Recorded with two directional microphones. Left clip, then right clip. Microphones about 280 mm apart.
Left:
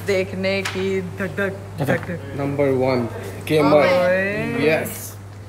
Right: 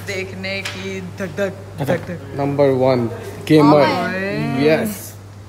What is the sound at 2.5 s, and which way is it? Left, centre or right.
Speech, right.